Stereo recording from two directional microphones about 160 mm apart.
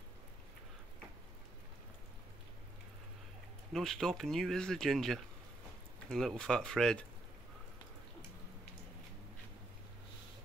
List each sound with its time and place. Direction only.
3.7 s speech: centre (ahead or behind)